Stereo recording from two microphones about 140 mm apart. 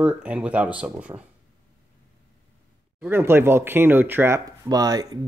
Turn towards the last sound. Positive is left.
turn(degrees=-25)  # may be behind; listen again after turning